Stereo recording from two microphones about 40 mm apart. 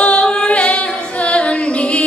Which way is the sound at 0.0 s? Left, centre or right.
Left.